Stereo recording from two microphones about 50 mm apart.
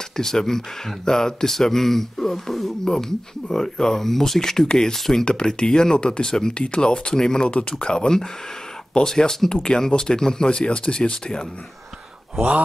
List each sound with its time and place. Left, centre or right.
0.2 s speech: centre
12.4 s speech: right